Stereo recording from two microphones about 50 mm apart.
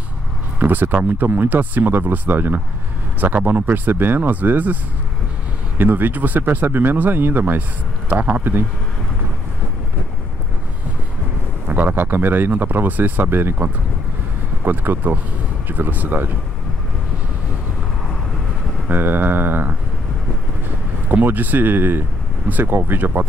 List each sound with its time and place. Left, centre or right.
0.6 s speech: right
5.8 s speech: right
11.7 s speech: right
18.9 s speech: right
21.1 s speech: right